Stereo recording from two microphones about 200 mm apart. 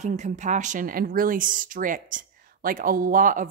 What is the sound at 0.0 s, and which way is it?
A woman's voice, 35° right (ahead or behind).